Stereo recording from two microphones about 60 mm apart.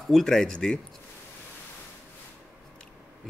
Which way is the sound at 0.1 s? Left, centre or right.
Centre.